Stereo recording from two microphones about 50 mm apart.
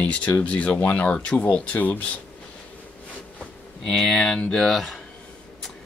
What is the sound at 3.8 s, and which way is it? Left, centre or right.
Speech, centre.